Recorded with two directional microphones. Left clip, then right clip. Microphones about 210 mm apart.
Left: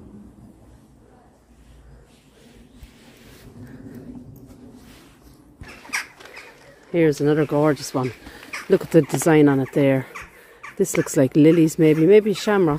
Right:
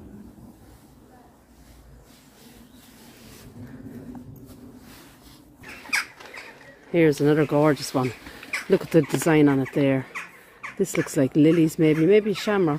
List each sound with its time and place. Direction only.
6.9 s speech: centre (ahead or behind)
8.6 s speech: 15° left (ahead or behind)